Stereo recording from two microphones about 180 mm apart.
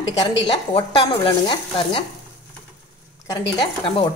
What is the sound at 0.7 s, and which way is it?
A woman's voice, 30° left (ahead or behind).